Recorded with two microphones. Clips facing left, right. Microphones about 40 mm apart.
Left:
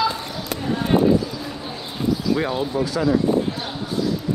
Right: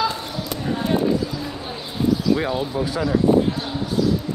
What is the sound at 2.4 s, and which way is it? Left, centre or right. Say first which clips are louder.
Speech: even; centre.